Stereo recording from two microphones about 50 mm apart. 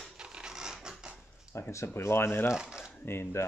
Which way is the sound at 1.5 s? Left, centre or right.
Left.